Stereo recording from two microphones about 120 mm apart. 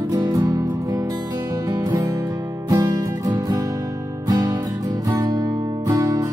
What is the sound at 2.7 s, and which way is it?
Music, 30° right (ahead or behind).